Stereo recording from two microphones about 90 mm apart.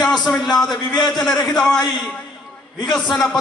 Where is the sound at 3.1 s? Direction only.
5° left (ahead or behind).